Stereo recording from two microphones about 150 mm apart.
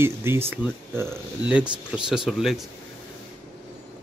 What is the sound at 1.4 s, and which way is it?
Speech, 5° right (ahead or behind).